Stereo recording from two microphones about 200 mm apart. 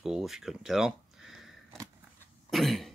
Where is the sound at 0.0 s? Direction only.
Centre (ahead or behind).